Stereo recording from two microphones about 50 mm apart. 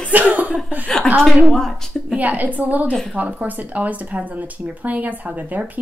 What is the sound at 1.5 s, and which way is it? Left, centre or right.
Speech, centre.